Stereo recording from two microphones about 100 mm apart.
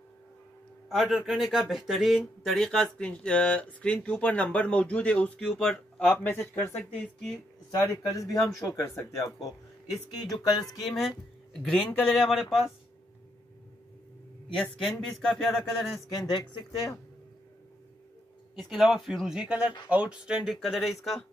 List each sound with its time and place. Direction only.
0.8 s speech: centre (ahead or behind); by 6.7 s 20° left (ahead or behind)
6.8 s speech: 5° left (ahead or behind)
7.8 s speech: 30° left (ahead or behind)
10.3 s speech: 40° left (ahead or behind)
10.9 s speech: centre (ahead or behind)
14.8 s speech: 5° left (ahead or behind)
16.2 s speech: 45° left (ahead or behind)
18.6 s speech: centre (ahead or behind)